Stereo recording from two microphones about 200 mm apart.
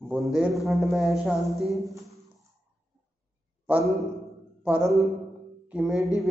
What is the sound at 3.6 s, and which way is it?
A man's voice, 5° right (ahead or behind).